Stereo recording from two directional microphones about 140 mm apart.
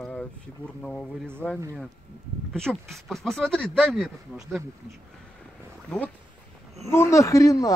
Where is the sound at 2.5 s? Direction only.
5° left (ahead or behind).